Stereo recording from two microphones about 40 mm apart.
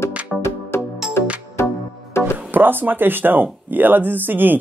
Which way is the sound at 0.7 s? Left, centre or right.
Left.